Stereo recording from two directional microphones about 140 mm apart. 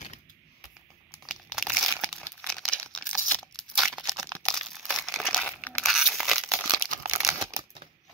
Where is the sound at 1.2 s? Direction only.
Centre (ahead or behind).